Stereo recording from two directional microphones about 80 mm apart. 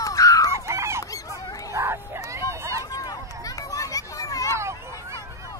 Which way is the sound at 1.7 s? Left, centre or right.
Right.